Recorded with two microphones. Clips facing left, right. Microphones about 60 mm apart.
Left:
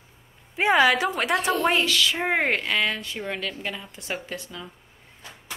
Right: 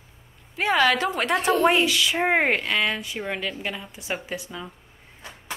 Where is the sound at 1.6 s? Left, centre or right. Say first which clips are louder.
Right 2 dB; centre.